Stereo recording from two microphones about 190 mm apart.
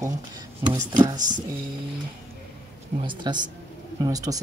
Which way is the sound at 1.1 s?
40° right (ahead or behind).